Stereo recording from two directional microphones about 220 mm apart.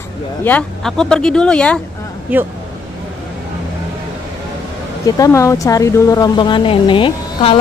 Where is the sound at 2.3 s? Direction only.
10° right (ahead or behind).